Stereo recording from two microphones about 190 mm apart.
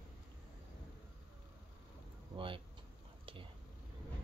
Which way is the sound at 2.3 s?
30° right (ahead or behind).